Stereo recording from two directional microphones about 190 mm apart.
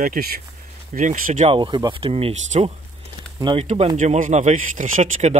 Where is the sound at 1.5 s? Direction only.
25° right (ahead or behind).